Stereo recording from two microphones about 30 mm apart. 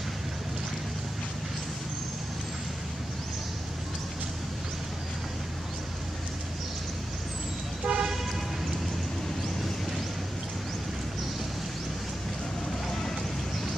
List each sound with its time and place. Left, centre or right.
7.8 s toot: right